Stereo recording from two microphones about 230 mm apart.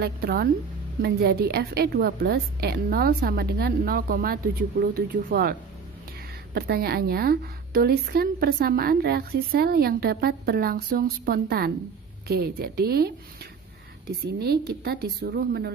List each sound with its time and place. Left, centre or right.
0.0 s a woman's voice: right